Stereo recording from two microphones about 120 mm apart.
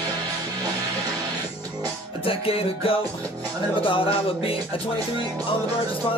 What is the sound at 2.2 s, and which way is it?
Music, 50° left (ahead or behind).